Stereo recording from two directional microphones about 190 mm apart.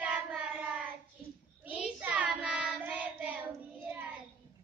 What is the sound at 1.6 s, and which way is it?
Child singing, 10° right (ahead or behind).